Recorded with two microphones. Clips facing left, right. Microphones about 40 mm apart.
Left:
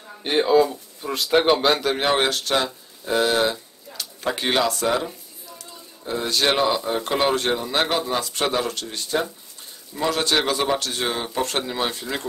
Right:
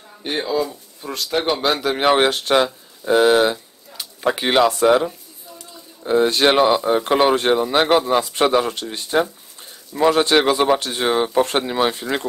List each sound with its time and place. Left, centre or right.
0.4 s speech: centre
1.0 s speech: centre
1.6 s a man's voice: centre
2.0 s speech: right
3.5 s a sound: centre
4.6 s speech: right